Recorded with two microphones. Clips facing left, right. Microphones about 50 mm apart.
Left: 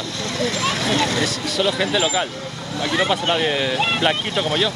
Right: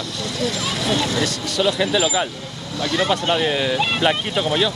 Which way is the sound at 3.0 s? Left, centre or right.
Centre.